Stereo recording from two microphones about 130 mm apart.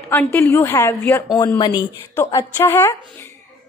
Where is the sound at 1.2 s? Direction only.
35° left (ahead or behind).